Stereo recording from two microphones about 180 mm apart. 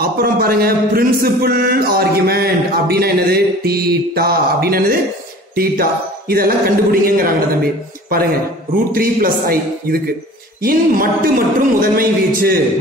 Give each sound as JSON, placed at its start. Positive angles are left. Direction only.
{"t": 0.0, "sound": "a man's voice", "side_deg": -55}
{"t": 6.3, "sound": "a man's voice", "side_deg": -55}